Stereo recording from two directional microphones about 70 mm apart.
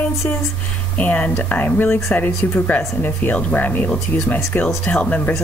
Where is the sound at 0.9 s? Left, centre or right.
Left.